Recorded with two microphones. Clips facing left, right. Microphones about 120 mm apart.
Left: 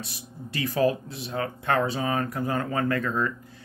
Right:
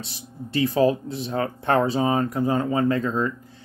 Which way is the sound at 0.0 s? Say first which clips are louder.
Right 3 dB; 30° right (ahead or behind).